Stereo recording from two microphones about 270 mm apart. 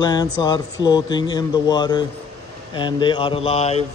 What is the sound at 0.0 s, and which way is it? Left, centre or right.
Speech, centre.